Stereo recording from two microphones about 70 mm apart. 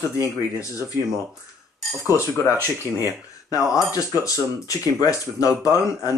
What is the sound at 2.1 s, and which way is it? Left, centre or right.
Speech, left.